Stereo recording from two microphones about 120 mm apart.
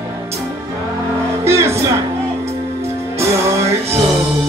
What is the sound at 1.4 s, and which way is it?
Music, 20° right (ahead or behind).